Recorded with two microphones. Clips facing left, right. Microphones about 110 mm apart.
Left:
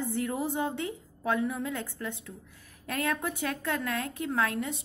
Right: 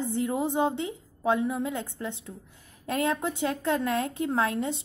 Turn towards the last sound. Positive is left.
turn(degrees=-25)  # may be behind; listen again after turning